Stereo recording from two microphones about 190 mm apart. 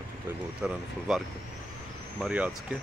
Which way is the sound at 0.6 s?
Centre (ahead or behind).